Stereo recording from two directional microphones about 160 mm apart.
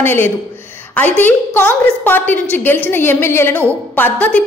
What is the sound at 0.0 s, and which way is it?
A woman's voice, 15° left (ahead or behind).